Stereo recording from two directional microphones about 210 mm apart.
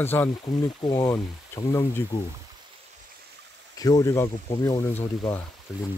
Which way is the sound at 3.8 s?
15° left (ahead or behind).